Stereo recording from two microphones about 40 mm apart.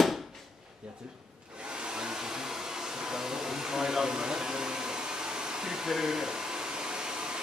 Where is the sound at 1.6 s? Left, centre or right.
Right.